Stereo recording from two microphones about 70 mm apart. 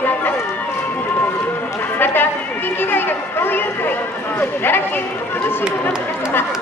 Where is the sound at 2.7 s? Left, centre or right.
Left.